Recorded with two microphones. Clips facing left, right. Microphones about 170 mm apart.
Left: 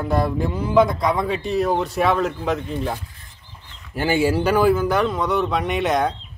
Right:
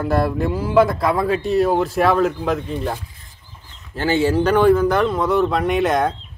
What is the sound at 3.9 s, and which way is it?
Speech, 10° left (ahead or behind).